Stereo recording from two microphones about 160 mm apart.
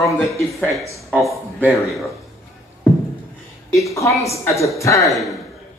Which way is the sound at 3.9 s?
20° left (ahead or behind).